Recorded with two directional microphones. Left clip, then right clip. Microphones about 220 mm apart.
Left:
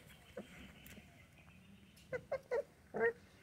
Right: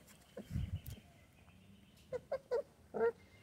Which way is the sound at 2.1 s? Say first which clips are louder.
Right 1 dB; 25° right (ahead or behind).